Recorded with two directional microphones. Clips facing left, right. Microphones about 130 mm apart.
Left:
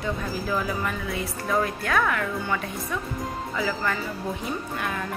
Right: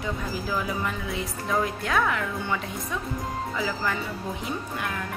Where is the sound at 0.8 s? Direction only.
20° right (ahead or behind).